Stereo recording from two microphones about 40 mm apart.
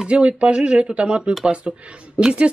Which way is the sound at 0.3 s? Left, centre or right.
Right.